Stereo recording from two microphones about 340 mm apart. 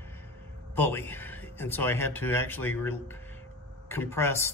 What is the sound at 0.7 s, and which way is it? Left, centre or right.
Speech, centre.